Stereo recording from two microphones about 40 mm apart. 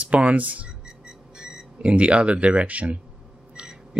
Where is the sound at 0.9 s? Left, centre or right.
Centre.